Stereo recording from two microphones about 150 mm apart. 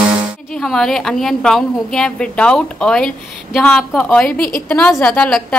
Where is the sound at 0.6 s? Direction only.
5° left (ahead or behind).